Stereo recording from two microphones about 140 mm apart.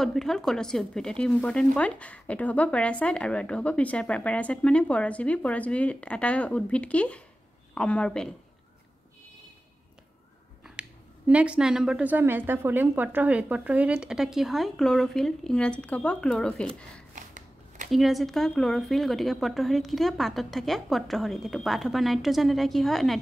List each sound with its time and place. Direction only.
0.0 s speech: 5° left (ahead or behind)
10.6 s speech: 10° right (ahead or behind)
17.1 s a sound: 65° right (ahead or behind)
17.9 s speech: centre (ahead or behind)